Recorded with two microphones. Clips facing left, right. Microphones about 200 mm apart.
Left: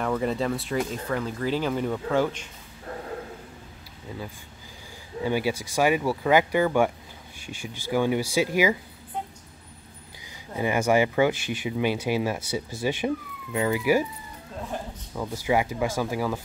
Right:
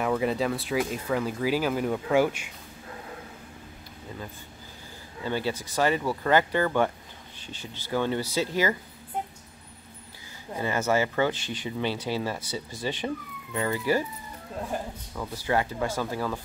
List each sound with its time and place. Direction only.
0.0 s speech: 5° right (ahead or behind)
5.2 s speech: 10° left (ahead or behind)
10.5 s speech: 15° left (ahead or behind)
15.4 s speech: 10° left (ahead or behind)